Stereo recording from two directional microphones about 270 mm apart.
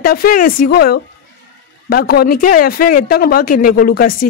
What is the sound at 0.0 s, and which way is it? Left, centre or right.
Speech, left.